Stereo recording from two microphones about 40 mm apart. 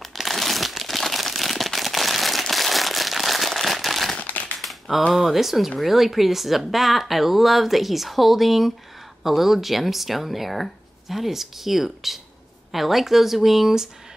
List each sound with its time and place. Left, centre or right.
0.0 s crumpling: centre
4.2 s crushing: left
4.6 s a sound: centre
5.1 s speech: centre